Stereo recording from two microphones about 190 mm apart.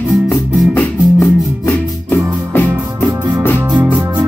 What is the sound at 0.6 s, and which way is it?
Music, 5° left (ahead or behind).